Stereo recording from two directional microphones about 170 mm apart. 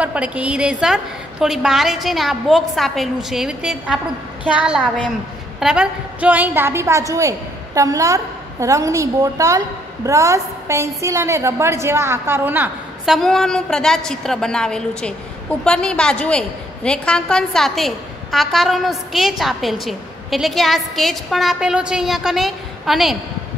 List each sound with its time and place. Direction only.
0.0 s a woman's voice: 5° right (ahead or behind)
5.6 s a woman's voice: 5° right (ahead or behind)